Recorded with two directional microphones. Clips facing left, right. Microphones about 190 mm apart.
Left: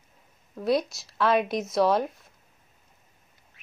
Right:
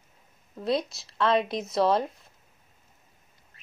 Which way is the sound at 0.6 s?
Centre (ahead or behind).